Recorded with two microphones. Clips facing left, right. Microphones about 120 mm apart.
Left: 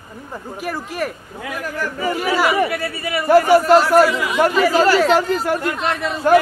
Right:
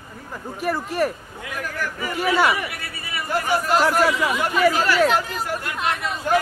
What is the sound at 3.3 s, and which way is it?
Speech, 75° left (ahead or behind).